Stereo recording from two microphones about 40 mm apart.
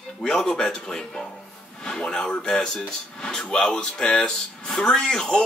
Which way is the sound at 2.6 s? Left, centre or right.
Centre.